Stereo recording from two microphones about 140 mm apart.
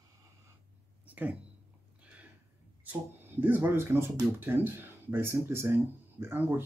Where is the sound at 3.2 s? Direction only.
15° right (ahead or behind).